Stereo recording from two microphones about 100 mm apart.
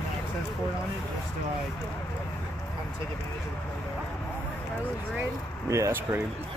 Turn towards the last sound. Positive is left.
turn(degrees=-30)  # may be behind; listen again after turning